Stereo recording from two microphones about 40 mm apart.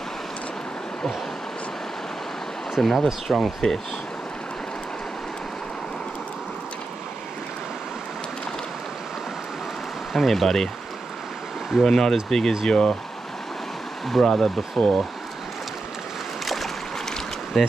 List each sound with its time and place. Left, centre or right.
2.7 s speech: centre
10.1 s speech: centre
11.8 s speech: centre
14.2 s speech: centre
16.4 s boat: centre
17.5 s speech: centre